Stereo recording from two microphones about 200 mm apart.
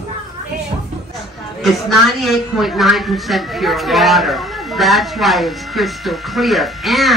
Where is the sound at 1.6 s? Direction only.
Centre (ahead or behind).